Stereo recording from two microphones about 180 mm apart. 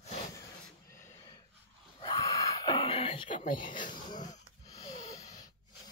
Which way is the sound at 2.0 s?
25° left (ahead or behind).